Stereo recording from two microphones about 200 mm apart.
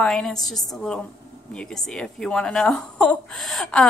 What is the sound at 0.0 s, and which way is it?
A woman's voice, 5° left (ahead or behind).